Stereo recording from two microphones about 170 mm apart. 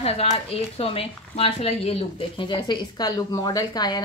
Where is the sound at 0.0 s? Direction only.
35° left (ahead or behind).